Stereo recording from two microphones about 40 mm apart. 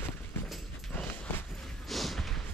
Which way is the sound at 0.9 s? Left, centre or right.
Left.